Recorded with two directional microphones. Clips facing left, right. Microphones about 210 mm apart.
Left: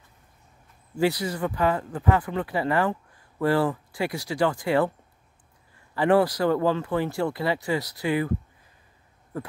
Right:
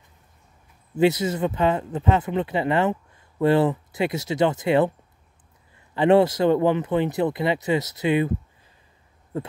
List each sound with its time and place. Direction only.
0.9 s speech: 20° right (ahead or behind)
5.9 s speech: 25° right (ahead or behind)
9.3 s speech: 25° right (ahead or behind)